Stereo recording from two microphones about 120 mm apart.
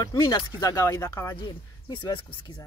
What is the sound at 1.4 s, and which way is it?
Speech, 40° left (ahead or behind).